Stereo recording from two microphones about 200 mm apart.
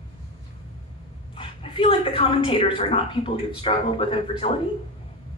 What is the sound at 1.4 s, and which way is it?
Speech, 25° left (ahead or behind).